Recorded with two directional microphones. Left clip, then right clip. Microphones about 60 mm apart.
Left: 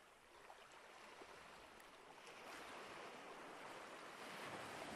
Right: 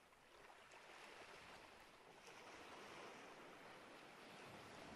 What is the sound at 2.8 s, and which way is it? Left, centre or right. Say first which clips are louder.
Waves: left 3 dB; centre.